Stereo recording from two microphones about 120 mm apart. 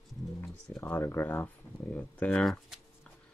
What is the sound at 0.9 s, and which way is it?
Speech, 20° left (ahead or behind).